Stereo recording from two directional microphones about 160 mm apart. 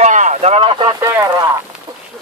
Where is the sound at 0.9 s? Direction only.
20° right (ahead or behind).